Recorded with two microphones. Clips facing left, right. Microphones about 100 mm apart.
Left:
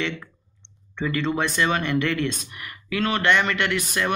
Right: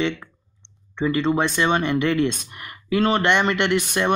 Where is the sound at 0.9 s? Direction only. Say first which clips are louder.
Right 4 dB; 25° right (ahead or behind).